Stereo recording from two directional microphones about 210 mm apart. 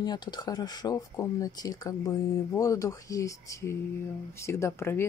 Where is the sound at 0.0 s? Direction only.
20° left (ahead or behind).